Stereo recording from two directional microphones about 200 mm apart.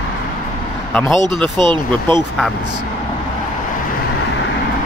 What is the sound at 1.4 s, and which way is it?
Speech, 25° right (ahead or behind).